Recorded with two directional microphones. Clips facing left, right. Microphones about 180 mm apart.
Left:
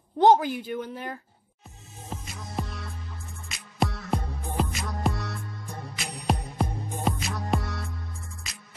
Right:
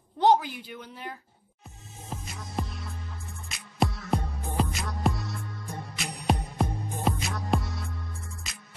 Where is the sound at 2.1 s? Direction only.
Centre (ahead or behind).